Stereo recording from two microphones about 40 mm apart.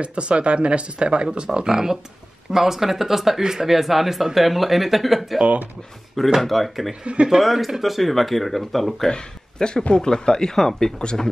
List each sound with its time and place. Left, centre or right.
0.0 s speech: right; by 5.4 s centre
6.4 s speech: centre
9.1 s speech: left
11.0 s speech: left